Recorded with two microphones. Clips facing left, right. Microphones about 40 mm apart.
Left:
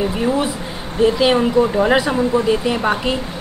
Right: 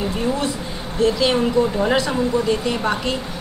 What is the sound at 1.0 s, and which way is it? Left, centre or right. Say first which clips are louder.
A woman's voice: left 3 dB; centre.